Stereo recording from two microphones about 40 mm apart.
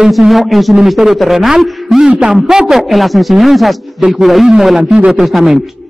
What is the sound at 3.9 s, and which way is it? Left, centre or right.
Speech, right.